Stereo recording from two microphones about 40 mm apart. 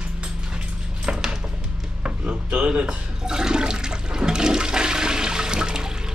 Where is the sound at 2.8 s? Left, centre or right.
Centre.